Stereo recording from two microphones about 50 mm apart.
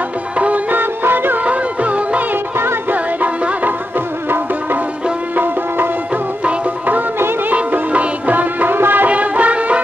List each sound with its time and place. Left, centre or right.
0.4 s music: right
1.4 s music: right
5.3 s music: right
7.2 s music: right
7.5 s music: right